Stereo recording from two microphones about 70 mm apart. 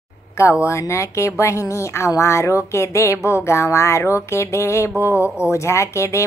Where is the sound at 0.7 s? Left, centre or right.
Left.